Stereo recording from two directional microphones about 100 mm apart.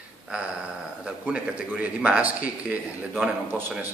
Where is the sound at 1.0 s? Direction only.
10° right (ahead or behind).